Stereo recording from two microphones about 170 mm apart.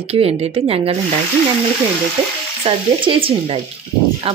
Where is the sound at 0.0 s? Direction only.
35° right (ahead or behind).